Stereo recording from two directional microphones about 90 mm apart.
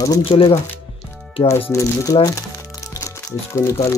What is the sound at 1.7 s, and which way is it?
Speech, 40° left (ahead or behind).